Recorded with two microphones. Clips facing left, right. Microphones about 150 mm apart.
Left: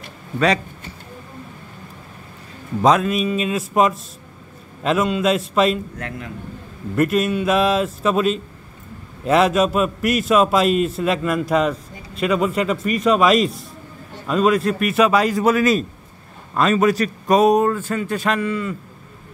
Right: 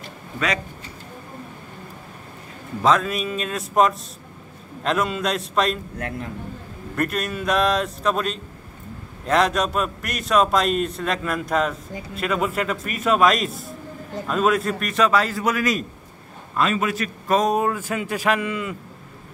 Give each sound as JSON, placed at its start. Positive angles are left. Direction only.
{"t": 3.0, "sound": "a man's voice", "side_deg": 0}
{"t": 7.0, "sound": "a man's voice", "side_deg": 5}
{"t": 15.4, "sound": "a man's voice", "side_deg": 30}
{"t": 16.5, "sound": "a man's voice", "side_deg": 40}
{"t": 17.5, "sound": "a man's voice", "side_deg": -5}